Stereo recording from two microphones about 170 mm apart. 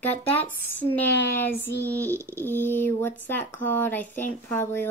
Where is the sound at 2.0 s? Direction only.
15° right (ahead or behind).